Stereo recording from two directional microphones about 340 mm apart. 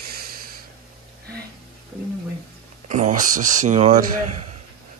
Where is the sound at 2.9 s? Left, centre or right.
Right.